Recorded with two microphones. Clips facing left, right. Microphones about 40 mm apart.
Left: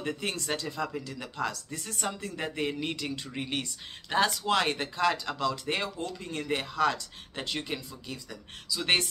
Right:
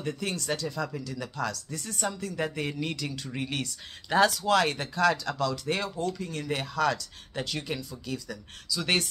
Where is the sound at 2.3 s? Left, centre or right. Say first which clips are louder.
Right 1 dB; centre.